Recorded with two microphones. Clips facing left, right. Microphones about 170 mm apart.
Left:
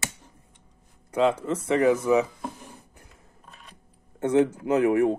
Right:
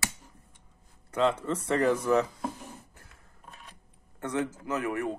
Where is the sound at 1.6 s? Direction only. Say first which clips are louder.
Left 5 dB; 5° left (ahead or behind).